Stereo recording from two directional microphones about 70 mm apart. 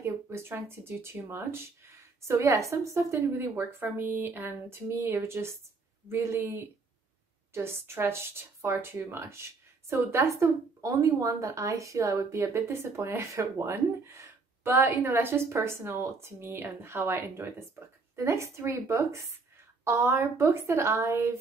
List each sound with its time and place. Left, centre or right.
0.0 s a woman's voice: right
14.7 s a woman's voice: right